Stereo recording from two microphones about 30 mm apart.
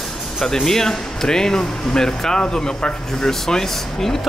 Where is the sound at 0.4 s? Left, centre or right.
Centre.